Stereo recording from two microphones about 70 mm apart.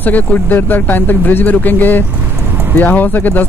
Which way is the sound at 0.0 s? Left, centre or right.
Left.